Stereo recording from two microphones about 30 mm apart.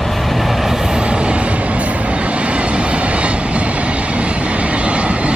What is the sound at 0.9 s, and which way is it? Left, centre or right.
Train, right.